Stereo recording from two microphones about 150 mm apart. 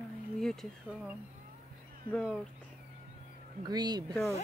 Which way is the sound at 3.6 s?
30° right (ahead or behind).